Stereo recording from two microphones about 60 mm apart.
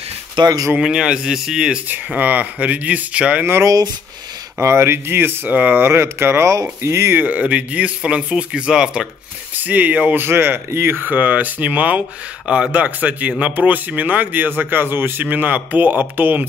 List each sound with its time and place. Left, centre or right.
0.7 s speech: centre
2.0 s speech: right
4.6 s speech: right
5.5 s speech: right
5.9 s speech: right
7.2 s speech: right
9.6 s speech: right
10.2 s speech: right
11.1 s speech: right